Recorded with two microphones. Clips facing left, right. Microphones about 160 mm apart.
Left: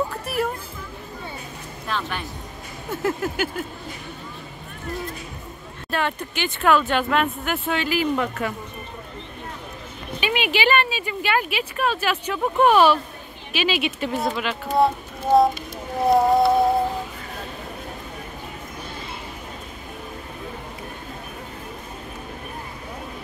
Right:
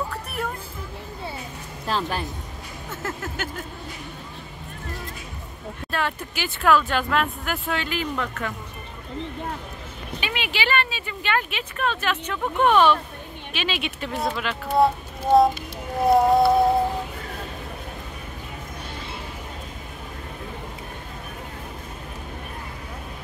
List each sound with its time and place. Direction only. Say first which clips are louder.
1.9 s speech: right 2 dB; 35° right (ahead or behind)
2.9 s speech: left 8 dB; 15° left (ahead or behind)
5.9 s speech: left 2 dB; centre (ahead or behind)
10.2 s speech: left 6 dB; 15° left (ahead or behind)
16.1 s speech: even; centre (ahead or behind)